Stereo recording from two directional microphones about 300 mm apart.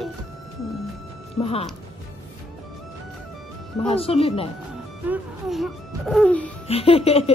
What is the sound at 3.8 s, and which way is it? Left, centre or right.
Speech, centre.